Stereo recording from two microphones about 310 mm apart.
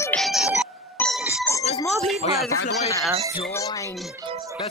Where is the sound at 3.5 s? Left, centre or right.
Centre.